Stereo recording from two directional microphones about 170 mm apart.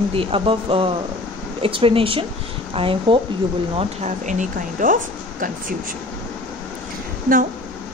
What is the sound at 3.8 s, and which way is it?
Speech, 45° right (ahead or behind).